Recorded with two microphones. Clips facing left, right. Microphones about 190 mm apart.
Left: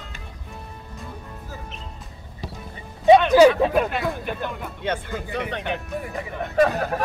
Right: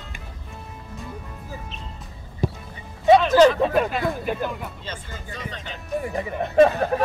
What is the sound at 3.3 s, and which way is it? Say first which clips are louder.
Speech: left 1 dB; 5° left (ahead or behind).